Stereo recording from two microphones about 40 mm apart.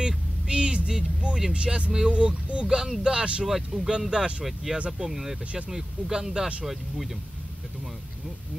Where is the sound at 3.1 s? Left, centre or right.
Right.